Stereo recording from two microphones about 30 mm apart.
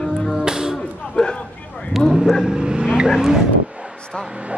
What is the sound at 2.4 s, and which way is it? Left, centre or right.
Vehicle, right.